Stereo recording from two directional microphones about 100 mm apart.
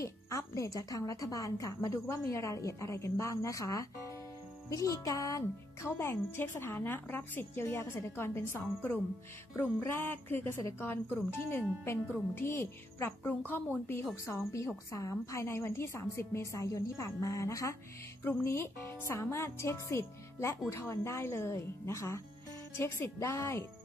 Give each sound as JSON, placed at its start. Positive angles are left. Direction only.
{"t": 0.0, "sound": "speech", "side_deg": 30}
{"t": 14.2, "sound": "speech", "side_deg": 30}